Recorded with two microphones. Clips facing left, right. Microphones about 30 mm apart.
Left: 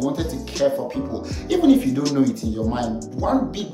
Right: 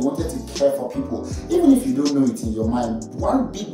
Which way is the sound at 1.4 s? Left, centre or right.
Left.